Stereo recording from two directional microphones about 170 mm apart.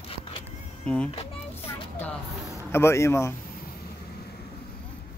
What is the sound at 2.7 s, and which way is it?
Speech, 15° left (ahead or behind).